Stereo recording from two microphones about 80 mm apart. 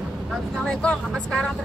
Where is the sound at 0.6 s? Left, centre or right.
Centre.